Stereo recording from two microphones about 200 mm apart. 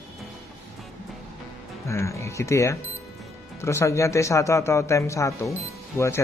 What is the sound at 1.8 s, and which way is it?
Speech, 15° left (ahead or behind).